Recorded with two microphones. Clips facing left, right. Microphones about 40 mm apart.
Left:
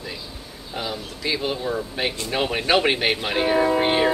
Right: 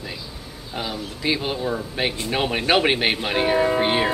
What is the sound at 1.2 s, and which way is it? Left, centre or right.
Speech, centre.